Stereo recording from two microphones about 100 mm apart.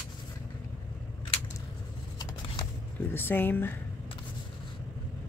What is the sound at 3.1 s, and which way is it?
Speech, 20° left (ahead or behind).